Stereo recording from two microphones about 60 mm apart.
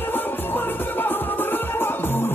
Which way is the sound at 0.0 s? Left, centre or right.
Left.